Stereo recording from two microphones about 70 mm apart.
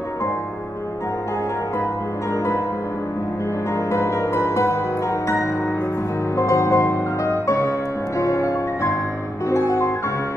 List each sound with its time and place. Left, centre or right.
3.9 s music: left
6.3 s music: left